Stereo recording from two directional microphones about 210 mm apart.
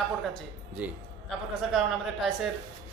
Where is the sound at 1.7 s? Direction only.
Centre (ahead or behind).